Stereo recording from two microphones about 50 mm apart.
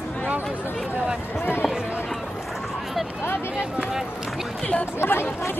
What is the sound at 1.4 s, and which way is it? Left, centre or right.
Speech, left.